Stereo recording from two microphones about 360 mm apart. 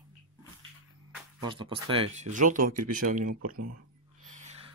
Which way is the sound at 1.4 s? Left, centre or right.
Centre.